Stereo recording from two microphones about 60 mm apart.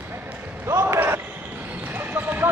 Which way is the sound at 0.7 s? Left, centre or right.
Right.